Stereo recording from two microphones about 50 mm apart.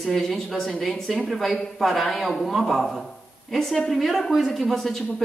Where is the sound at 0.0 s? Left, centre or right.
Centre.